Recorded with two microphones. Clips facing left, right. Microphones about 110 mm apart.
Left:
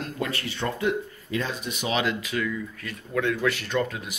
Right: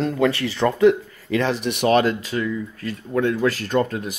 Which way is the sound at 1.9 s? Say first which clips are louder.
Right 7 dB; 40° right (ahead or behind).